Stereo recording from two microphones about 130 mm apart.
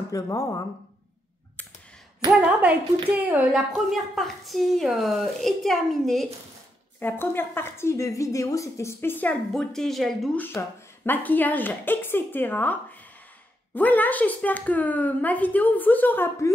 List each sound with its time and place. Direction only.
0.1 s a woman's voice: 25° left (ahead or behind)
2.3 s a woman's voice: 10° right (ahead or behind)
7.0 s a woman's voice: 15° left (ahead or behind)
10.3 s speech: 15° left (ahead or behind)
13.7 s speech: 15° left (ahead or behind)